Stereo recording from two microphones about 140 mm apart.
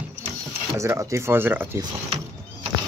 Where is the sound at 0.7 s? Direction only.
20° right (ahead or behind).